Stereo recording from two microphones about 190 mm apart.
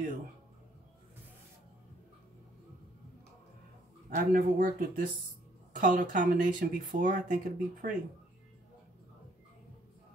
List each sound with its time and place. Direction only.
4.1 s speech: 45° right (ahead or behind)